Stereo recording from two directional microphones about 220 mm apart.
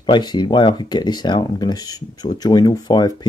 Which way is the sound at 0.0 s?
20° left (ahead or behind).